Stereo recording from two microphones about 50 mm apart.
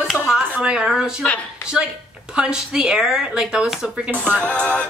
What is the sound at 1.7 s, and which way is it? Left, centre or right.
A woman's voice, centre.